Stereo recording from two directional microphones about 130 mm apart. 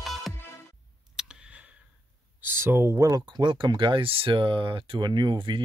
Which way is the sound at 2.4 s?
15° right (ahead or behind).